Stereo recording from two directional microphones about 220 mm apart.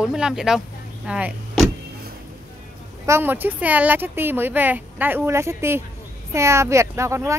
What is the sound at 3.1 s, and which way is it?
Speech, 10° right (ahead or behind).